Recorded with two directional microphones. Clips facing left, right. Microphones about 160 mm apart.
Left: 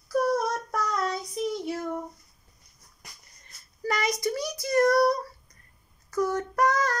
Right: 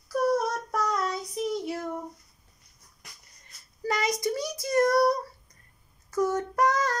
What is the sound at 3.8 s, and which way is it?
Child singing, 25° right (ahead or behind).